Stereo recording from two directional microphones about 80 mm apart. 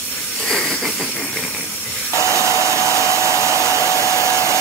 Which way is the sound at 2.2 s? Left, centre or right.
Right.